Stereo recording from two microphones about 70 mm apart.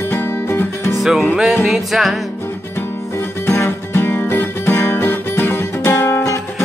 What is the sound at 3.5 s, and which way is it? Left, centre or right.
Music, left.